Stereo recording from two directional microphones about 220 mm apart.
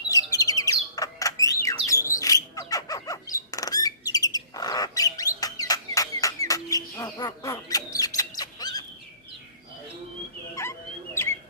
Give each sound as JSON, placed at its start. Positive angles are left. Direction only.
{"t": 0.1, "sound": "bird", "side_deg": 15}
{"t": 10.5, "sound": "rodents", "side_deg": 10}